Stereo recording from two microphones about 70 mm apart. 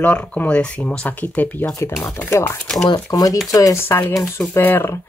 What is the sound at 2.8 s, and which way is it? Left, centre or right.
Speech, left.